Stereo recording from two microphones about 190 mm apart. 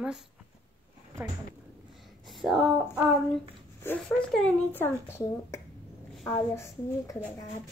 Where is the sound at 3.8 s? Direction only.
10° left (ahead or behind).